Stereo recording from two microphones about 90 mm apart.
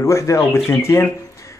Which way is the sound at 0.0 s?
35° left (ahead or behind).